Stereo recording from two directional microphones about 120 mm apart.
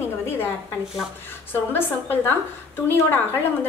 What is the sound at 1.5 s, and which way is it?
A woman's voice, 15° left (ahead or behind).